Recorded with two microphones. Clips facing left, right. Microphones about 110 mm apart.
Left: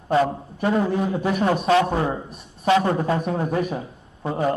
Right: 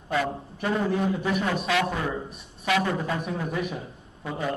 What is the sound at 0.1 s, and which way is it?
A man's voice, 35° left (ahead or behind).